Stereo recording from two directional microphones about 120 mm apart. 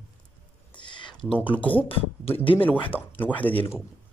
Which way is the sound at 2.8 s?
15° left (ahead or behind).